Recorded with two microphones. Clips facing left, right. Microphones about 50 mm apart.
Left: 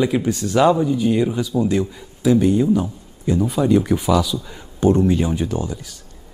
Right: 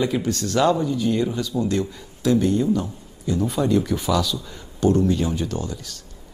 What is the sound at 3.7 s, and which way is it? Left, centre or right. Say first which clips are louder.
Speech: left 6 dB; centre.